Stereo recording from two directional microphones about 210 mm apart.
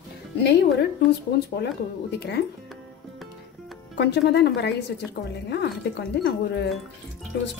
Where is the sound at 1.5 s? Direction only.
55° left (ahead or behind).